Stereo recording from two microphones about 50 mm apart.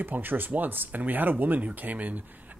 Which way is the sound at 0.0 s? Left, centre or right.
Right.